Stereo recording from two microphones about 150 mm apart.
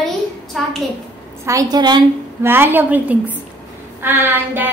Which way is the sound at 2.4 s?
15° right (ahead or behind).